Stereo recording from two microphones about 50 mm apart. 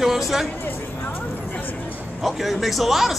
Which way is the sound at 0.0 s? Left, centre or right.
Centre.